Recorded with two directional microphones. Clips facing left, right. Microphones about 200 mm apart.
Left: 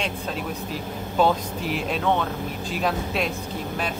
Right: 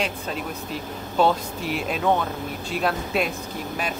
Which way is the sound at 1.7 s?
5° right (ahead or behind).